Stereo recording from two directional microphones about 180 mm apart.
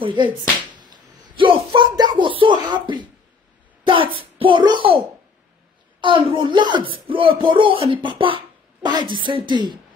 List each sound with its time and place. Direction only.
0.0 s speech: 30° right (ahead or behind)